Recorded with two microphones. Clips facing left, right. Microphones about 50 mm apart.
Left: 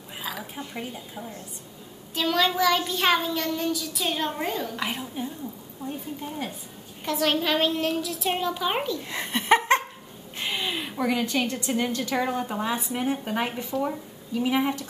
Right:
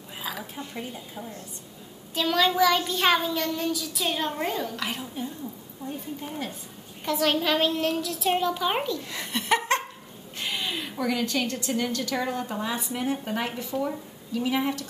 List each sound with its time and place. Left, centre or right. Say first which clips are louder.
0.2 s a sound: even; centre
0.7 s a woman's voice: left 1 dB; centre
4.7 s speech: left 2 dB; centre
7.1 s a child's voice: even; centre
9.0 s laughter: left 2 dB; left
10.3 s a woman's voice: left 2 dB; centre